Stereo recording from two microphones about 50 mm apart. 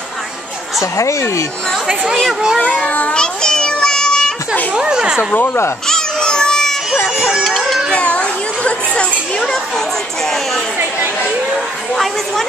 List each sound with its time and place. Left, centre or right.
0.9 s speech: left
2.6 s a child's voice: left
3.2 s a sound: centre
4.7 s speech: centre
5.9 s baby cry: centre
7.4 s a sound: centre
7.9 s children playing: left
11.9 s speech: centre